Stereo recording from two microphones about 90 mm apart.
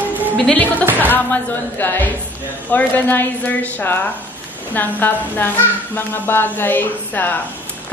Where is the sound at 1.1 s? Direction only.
20° left (ahead or behind).